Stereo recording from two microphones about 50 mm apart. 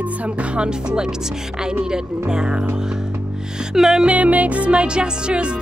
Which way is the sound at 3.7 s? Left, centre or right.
Centre.